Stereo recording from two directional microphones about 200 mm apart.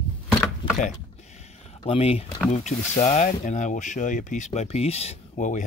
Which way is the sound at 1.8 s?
30° left (ahead or behind).